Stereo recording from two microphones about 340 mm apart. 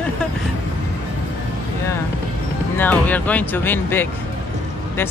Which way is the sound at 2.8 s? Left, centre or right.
Centre.